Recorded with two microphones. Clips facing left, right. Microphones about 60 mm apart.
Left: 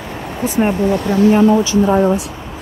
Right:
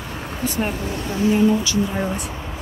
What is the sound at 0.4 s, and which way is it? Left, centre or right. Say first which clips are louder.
Speech: left 8 dB; left.